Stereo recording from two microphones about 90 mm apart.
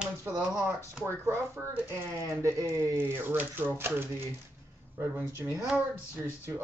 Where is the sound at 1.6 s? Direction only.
30° right (ahead or behind).